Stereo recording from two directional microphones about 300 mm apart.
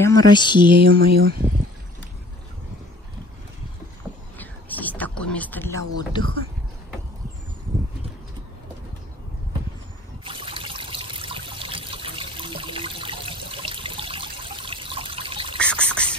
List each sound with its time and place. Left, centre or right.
0.0 s speech: centre
0.7 s speech: right
4.4 s a sound: centre
5.9 s speech: centre
10.2 s trickle: centre
15.6 s a sound: centre